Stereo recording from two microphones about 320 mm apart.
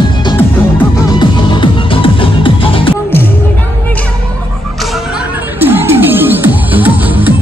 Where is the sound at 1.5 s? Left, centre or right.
Centre.